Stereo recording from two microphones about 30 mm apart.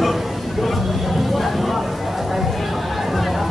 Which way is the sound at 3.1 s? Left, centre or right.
Centre.